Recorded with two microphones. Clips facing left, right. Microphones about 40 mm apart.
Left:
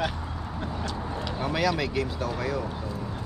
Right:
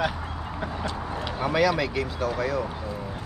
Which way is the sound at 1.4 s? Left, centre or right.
Centre.